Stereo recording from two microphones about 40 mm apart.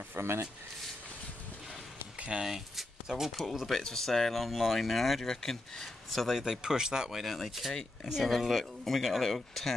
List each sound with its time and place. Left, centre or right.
0.1 s speech: right
2.1 s a sound: right
2.4 s speech: centre
5.2 s speech: centre
6.1 s speech: centre
6.4 s speech: centre
7.3 s speech: centre